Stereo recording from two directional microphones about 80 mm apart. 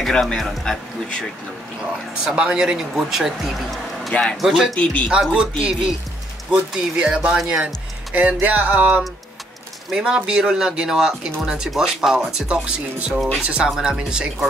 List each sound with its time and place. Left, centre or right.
0.0 s speech: centre
2.2 s speech: centre
4.1 s speech: centre
4.4 s speech: centre
4.7 s speech: centre
5.6 s speech: centre